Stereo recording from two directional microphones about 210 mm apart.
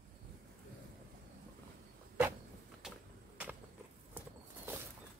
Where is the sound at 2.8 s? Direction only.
Centre (ahead or behind).